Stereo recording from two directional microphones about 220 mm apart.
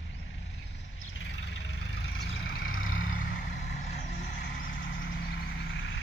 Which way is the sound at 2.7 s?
60° left (ahead or behind).